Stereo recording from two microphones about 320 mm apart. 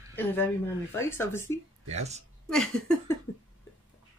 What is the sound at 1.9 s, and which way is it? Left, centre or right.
Speech, right.